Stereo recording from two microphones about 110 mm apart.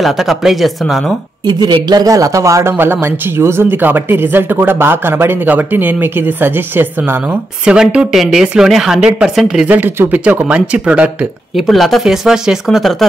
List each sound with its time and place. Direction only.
0.0 s speech: centre (ahead or behind)
1.4 s speech: 40° right (ahead or behind); by 9.7 s 5° right (ahead or behind)
9.7 s speech: 20° right (ahead or behind)
11.5 s speech: centre (ahead or behind)